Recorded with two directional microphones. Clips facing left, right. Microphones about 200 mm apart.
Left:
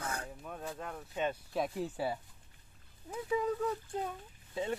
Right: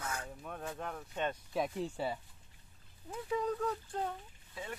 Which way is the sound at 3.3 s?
5° left (ahead or behind).